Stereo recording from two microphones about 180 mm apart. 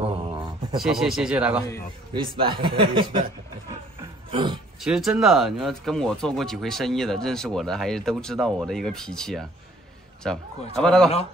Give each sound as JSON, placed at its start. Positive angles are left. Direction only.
{"t": 0.0, "sound": "a sound", "side_deg": -25}
{"t": 0.8, "sound": "speech", "side_deg": 0}
{"t": 2.1, "sound": "speech", "side_deg": -30}
{"t": 4.3, "sound": "speech", "side_deg": -25}
{"t": 4.8, "sound": "speech", "side_deg": -5}